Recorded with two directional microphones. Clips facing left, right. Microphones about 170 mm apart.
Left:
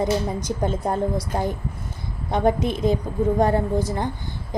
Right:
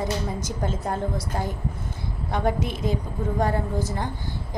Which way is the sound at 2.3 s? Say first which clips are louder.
Left 5 dB; 20° left (ahead or behind).